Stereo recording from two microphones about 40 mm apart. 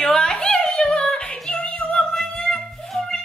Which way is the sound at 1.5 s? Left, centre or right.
Left.